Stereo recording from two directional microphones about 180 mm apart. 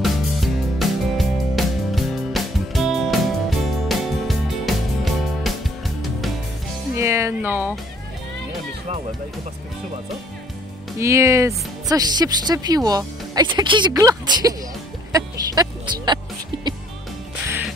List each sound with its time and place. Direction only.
0.0 s music: centre (ahead or behind)
7.0 s music: 15° right (ahead or behind)
11.0 s speech: 15° right (ahead or behind)